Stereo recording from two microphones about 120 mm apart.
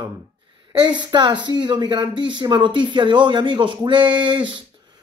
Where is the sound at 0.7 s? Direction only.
40° right (ahead or behind).